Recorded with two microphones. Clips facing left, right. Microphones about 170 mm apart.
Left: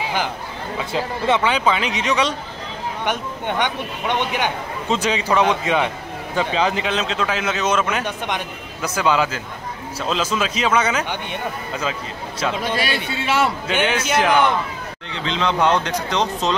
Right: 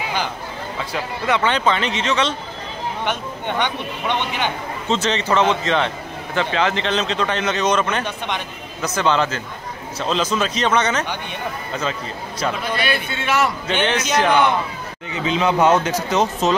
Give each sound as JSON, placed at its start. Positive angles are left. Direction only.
{"t": 0.9, "sound": "speech", "side_deg": 30}
{"t": 1.4, "sound": "a man's voice", "side_deg": 5}
{"t": 13.1, "sound": "a man's voice", "side_deg": 30}
{"t": 13.7, "sound": "a man's voice", "side_deg": 10}
{"t": 15.0, "sound": "speech", "side_deg": -5}